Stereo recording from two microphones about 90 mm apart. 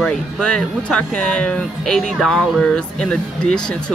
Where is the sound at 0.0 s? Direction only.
10° left (ahead or behind).